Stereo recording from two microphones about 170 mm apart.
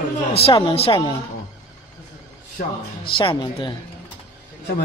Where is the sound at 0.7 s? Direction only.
35° left (ahead or behind).